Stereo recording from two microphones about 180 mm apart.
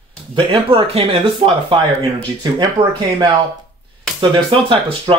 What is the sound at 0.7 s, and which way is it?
Speech, 30° right (ahead or behind).